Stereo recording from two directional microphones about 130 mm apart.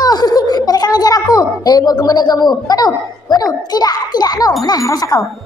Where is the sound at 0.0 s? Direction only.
30° left (ahead or behind).